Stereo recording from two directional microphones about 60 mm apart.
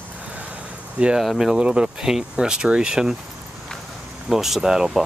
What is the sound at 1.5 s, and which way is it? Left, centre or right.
Speech, centre.